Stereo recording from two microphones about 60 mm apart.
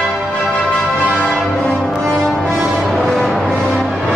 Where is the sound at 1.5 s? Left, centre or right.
Centre.